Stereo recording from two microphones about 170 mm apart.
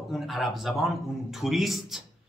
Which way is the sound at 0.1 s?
Centre (ahead or behind).